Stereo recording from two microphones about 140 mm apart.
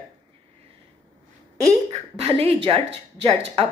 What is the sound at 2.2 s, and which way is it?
Speech, 45° right (ahead or behind).